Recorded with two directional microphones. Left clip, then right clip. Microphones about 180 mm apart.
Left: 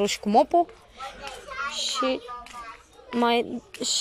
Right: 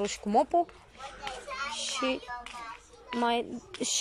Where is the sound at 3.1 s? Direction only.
Centre (ahead or behind).